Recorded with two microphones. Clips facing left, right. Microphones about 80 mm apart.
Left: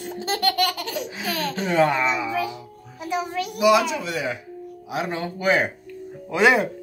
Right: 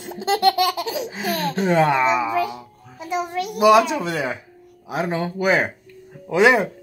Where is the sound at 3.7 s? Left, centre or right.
Right.